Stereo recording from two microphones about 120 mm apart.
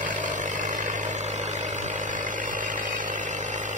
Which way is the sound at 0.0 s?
90° right.